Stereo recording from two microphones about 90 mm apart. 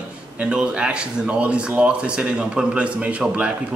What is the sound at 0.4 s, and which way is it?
Speech, 10° right (ahead or behind).